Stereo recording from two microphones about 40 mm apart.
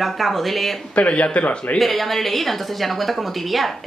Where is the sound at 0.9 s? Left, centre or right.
Left.